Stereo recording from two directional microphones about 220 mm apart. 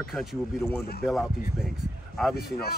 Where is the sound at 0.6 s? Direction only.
45° left (ahead or behind).